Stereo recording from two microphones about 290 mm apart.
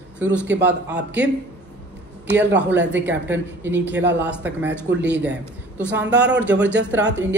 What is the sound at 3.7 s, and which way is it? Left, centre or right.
Speech, right.